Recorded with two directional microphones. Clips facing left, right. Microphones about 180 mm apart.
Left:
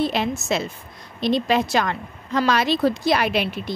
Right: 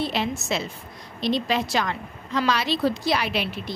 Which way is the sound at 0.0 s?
50° left (ahead or behind).